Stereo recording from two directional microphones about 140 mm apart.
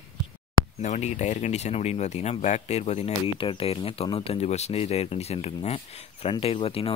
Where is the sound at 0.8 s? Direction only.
60° left (ahead or behind).